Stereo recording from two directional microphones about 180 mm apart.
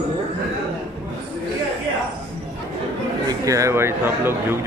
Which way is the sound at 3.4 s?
15° right (ahead or behind).